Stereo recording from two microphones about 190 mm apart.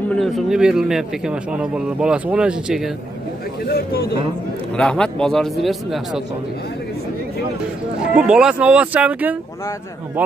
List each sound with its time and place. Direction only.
0.1 s speech: centre (ahead or behind)
3.6 s speech: 55° left (ahead or behind)
4.7 s speech: 5° left (ahead or behind)
8.1 s speech: 5° right (ahead or behind)